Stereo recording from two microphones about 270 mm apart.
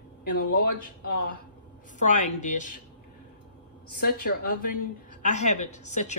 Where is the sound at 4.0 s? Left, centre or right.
Left.